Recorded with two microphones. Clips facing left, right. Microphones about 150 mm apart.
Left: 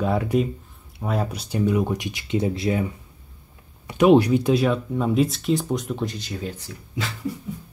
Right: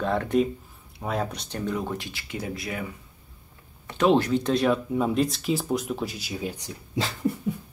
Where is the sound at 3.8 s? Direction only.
15° left (ahead or behind); by 6.7 s 15° right (ahead or behind).